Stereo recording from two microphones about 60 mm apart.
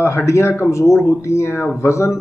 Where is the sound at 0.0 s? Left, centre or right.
Left.